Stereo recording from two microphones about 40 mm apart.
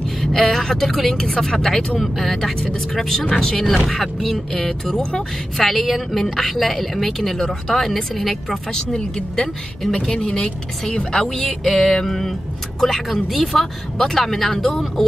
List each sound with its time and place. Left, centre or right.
0.2 s speech: centre
1.2 s speech: centre
8.7 s speech: centre